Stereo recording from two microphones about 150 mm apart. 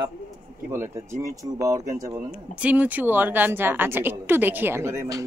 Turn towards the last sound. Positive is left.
turn(degrees=-20)  # may be behind; listen again after turning